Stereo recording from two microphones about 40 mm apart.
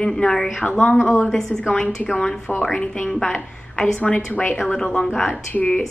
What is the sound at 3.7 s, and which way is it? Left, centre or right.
A woman's voice, centre.